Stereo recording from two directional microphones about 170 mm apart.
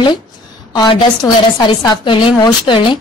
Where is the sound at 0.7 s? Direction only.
25° left (ahead or behind).